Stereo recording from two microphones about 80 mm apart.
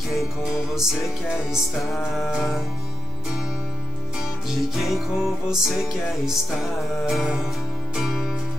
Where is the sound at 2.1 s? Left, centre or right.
Centre.